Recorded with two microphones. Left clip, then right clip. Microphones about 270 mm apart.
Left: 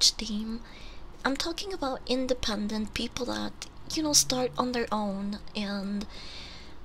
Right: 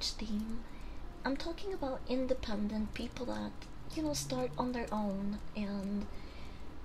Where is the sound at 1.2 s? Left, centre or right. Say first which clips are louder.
Left 8 dB; left.